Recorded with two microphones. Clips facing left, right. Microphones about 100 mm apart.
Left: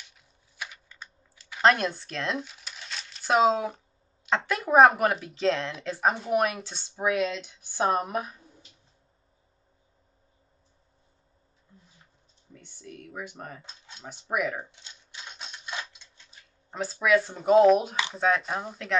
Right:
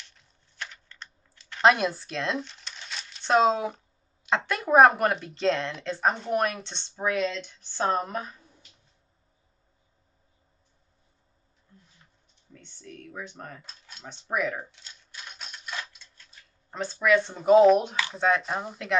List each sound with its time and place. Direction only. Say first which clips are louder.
0.0 s typing: even; 5° left (ahead or behind)
4.3 s speech: right 1 dB; centre (ahead or behind)
12.5 s speech: even; 10° left (ahead or behind)
13.6 s speech: left 1 dB; 20° left (ahead or behind)
14.6 s typewriter: even; 20° left (ahead or behind)
16.3 s speech: left 1 dB; 5° left (ahead or behind)